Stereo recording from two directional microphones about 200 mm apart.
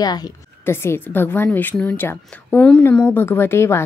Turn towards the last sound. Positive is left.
turn(degrees=10)  # may be behind; listen again after turning